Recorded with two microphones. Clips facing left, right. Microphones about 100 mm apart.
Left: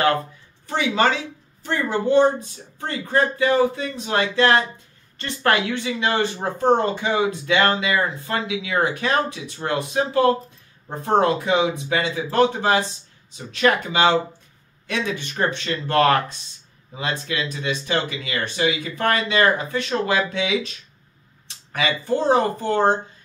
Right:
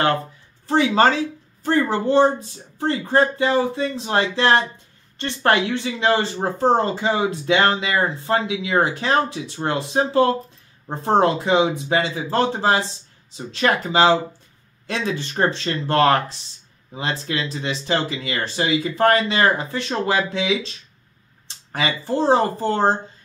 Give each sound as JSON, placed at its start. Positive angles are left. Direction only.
{"t": 0.7, "sound": "speech", "side_deg": -35}
{"t": 21.7, "sound": "speech", "side_deg": -30}